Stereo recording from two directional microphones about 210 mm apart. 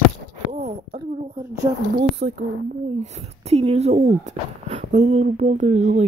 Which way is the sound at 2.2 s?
55° right (ahead or behind).